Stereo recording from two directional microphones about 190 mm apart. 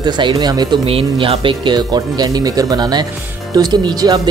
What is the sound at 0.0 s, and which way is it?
Speech, 25° right (ahead or behind).